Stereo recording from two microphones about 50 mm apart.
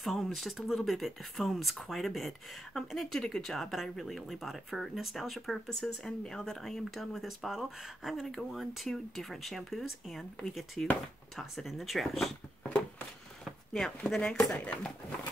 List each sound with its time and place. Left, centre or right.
0.0 s speech: centre
13.7 s speech: centre